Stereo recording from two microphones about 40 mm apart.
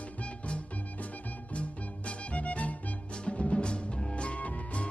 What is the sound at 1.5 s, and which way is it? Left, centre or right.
Music, left.